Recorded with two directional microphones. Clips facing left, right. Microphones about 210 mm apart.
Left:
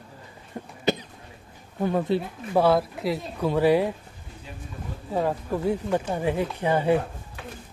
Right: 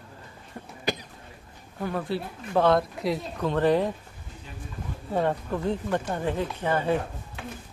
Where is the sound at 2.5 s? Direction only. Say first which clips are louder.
Left 1 dB; 5° left (ahead or behind).